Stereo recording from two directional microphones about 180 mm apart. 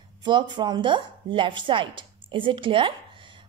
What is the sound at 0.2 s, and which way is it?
A woman's voice, 25° right (ahead or behind).